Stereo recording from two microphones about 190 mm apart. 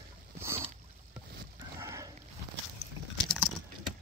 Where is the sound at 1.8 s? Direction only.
15° right (ahead or behind).